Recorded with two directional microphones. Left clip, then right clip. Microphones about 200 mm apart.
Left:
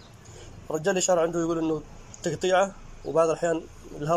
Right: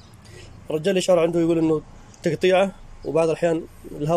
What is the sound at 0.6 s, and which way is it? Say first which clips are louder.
Speech: right 4 dB; 15° right (ahead or behind).